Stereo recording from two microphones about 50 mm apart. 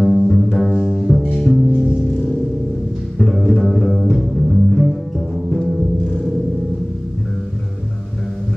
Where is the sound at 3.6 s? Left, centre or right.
Centre.